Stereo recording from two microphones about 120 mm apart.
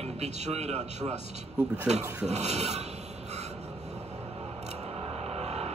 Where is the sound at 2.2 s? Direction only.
65° right (ahead or behind).